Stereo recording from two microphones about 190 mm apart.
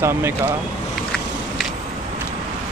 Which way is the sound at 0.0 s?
10° right (ahead or behind).